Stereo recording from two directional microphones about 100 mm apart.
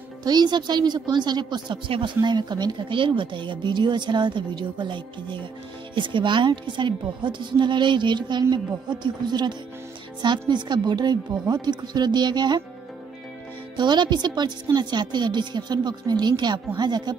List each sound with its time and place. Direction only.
0.2 s a woman's voice: 45° right (ahead or behind)
13.7 s a woman's voice: 50° right (ahead or behind)